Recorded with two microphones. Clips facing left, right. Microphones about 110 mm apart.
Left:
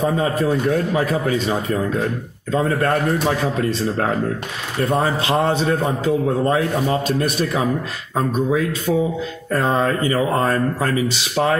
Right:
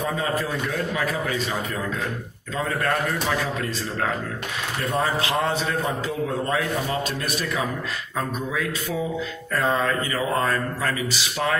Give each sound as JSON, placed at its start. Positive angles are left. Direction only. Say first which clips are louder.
{"t": 0.0, "sound": "a man's voice", "louder": "left 6 dB", "side_deg": 30}
{"t": 5.3, "sound": "a man's voice", "louder": "left 6 dB", "side_deg": 30}